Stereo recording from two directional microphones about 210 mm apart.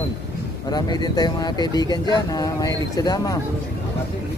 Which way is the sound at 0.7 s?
20° left (ahead or behind).